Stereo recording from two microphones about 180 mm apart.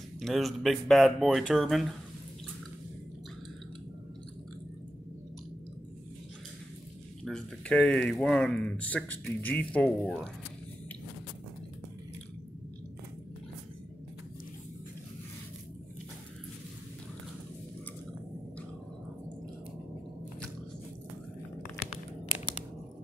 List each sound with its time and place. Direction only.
0.2 s speech: centre (ahead or behind)
7.2 s speech: 5° left (ahead or behind)
21.9 s a sound: 30° left (ahead or behind)